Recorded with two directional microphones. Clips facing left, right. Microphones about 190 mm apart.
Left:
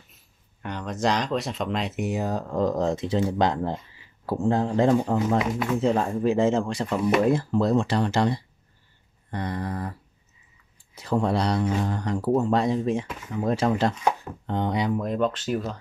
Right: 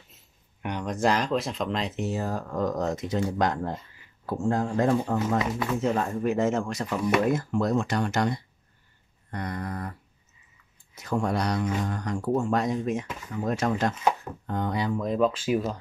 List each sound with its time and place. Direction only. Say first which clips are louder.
0.6 s speech: right 1 dB; 10° right (ahead or behind)
2.0 s speech: left 2 dB; 15° left (ahead or behind)
11.0 s speech: left 3 dB; 30° left (ahead or behind)
15.0 s speech: right 1 dB; centre (ahead or behind)